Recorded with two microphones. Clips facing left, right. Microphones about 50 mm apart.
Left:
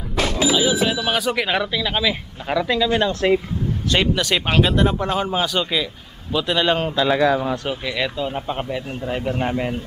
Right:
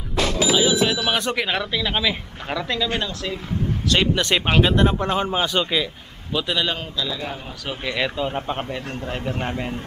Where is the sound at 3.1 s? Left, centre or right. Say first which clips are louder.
Left 11 dB; left.